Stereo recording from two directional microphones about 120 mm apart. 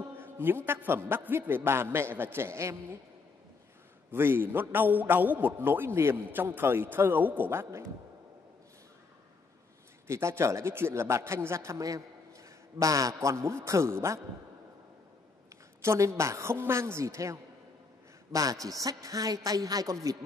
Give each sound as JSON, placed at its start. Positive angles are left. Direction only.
{"t": 0.2, "sound": "a man's voice", "side_deg": -20}
{"t": 4.1, "sound": "a man's voice", "side_deg": -20}
{"t": 10.0, "sound": "a man's voice", "side_deg": -25}
{"t": 15.8, "sound": "a man's voice", "side_deg": -25}